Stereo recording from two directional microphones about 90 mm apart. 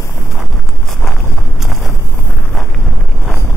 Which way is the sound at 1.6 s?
Centre (ahead or behind).